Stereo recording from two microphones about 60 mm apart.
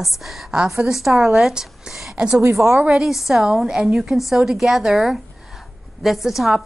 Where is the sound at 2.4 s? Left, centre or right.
Right.